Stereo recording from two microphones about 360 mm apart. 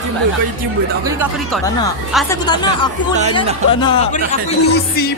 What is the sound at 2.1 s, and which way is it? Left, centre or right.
Speech, centre.